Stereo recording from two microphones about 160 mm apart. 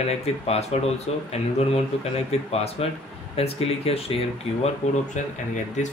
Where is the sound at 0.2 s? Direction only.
40° left (ahead or behind).